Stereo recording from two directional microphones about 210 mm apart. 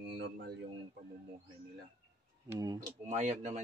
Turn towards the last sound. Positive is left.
turn(degrees=-35)  # may be behind; listen again after turning